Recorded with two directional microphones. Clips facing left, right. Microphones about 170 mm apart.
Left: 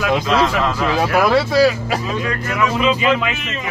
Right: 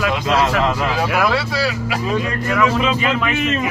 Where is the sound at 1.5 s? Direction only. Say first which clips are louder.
Left 7 dB; 45° left (ahead or behind).